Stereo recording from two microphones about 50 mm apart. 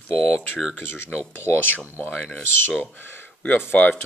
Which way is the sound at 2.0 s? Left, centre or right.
Left.